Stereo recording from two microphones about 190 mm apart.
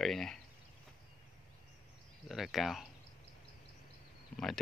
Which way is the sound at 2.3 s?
Centre (ahead or behind).